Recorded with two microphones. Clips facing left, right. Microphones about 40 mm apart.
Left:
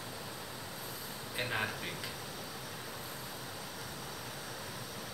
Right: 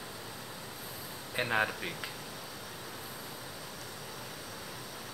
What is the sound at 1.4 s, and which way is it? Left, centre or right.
Speech, centre.